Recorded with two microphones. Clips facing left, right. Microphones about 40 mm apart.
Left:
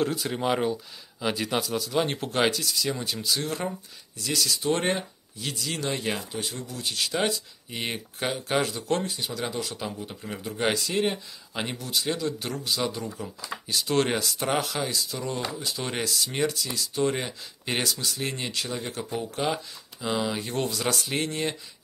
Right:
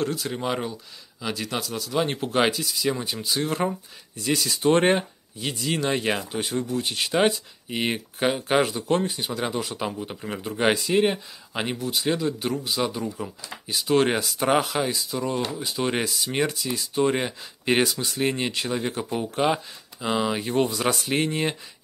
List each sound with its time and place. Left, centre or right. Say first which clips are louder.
0.0 s speech: even; centre